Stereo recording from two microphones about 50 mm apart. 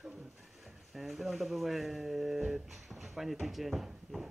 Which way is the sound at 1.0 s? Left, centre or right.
Centre.